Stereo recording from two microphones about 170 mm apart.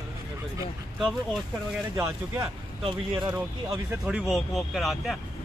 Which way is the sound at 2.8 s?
25° right (ahead or behind).